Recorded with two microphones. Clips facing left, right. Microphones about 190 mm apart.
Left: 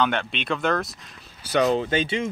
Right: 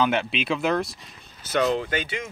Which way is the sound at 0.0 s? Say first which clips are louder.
Right 1 dB; 5° right (ahead or behind).